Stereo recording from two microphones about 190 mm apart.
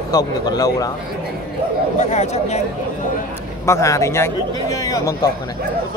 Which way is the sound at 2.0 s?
35° left (ahead or behind).